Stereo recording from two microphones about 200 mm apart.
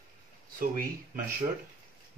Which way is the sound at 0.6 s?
45° right (ahead or behind).